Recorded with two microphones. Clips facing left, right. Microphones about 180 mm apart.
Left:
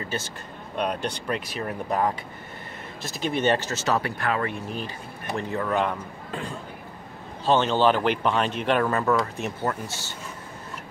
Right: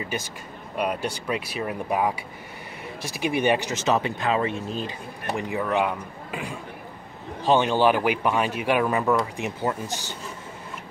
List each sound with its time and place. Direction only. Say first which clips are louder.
0.0 s speech: right 1 dB; 15° right (ahead or behind)